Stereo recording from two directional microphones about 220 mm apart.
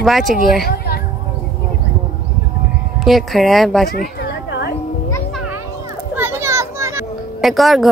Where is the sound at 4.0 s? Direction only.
45° left (ahead or behind).